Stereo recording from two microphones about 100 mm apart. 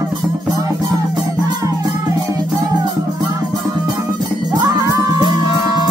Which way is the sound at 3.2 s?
40° right (ahead or behind).